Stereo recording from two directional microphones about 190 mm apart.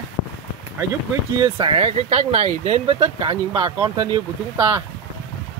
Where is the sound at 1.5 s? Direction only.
25° right (ahead or behind).